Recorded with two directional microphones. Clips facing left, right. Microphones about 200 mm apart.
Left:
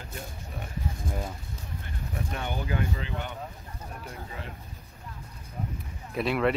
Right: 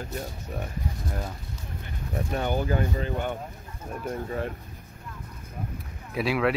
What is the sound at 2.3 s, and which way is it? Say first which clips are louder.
Speech: right 7 dB; 40° right (ahead or behind).